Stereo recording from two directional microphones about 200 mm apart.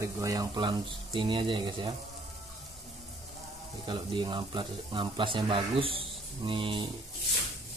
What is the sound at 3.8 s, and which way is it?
Speech, 25° right (ahead or behind).